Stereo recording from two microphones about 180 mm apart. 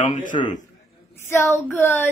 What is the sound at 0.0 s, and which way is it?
Speech, 45° left (ahead or behind).